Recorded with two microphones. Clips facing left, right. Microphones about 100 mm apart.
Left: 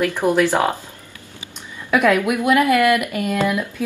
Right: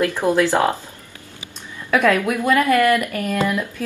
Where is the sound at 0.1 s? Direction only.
15° left (ahead or behind).